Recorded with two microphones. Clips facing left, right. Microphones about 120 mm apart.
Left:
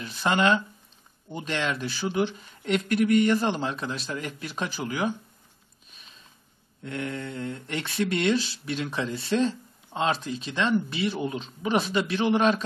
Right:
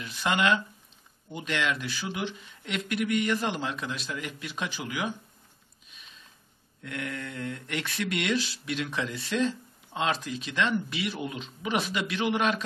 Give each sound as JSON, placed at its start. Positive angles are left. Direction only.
{"t": 0.0, "sound": "speech", "side_deg": 35}
{"t": 6.8, "sound": "speech", "side_deg": 30}